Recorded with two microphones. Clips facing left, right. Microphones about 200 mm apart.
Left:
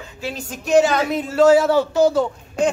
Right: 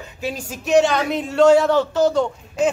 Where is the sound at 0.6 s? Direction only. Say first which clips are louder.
Left 1 dB; centre (ahead or behind).